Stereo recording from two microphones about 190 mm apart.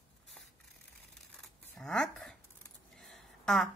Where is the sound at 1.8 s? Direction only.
5° left (ahead or behind).